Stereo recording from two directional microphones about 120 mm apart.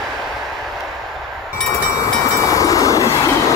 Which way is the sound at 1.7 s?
25° left (ahead or behind).